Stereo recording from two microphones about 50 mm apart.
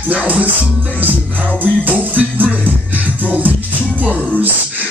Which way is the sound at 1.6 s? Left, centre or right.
Right.